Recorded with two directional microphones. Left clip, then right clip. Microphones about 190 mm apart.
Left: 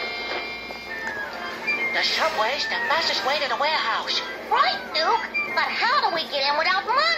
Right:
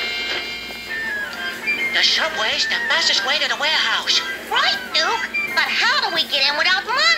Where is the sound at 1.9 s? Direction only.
35° right (ahead or behind).